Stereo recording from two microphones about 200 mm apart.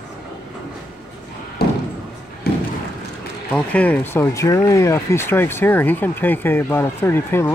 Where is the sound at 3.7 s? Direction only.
5° left (ahead or behind).